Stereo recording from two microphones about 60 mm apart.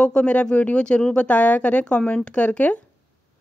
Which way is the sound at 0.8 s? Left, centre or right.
Centre.